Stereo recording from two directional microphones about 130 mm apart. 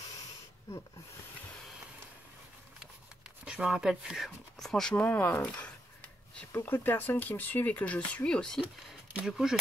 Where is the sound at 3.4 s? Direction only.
5° right (ahead or behind).